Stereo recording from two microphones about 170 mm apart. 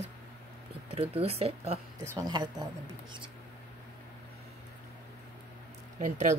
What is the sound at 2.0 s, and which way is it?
Speech, 20° right (ahead or behind).